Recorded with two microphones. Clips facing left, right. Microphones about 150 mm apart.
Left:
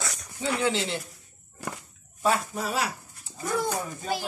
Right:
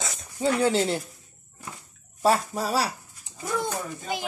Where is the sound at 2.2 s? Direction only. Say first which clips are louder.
Right 3 dB; 35° right (ahead or behind).